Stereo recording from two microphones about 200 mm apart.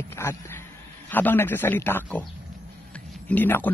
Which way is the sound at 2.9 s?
10° left (ahead or behind).